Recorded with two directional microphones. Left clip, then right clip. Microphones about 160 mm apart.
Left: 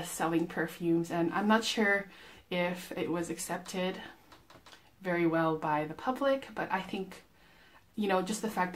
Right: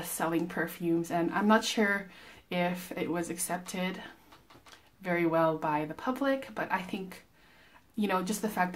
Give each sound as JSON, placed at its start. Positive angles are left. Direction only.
{"t": 0.0, "sound": "speech", "side_deg": -10}